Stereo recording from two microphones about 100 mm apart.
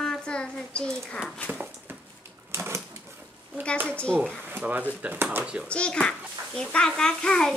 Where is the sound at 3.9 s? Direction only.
10° left (ahead or behind).